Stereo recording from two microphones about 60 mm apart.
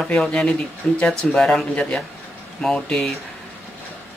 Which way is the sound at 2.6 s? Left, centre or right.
Centre.